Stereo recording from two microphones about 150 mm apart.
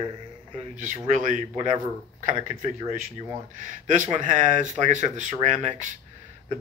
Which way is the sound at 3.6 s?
60° right (ahead or behind).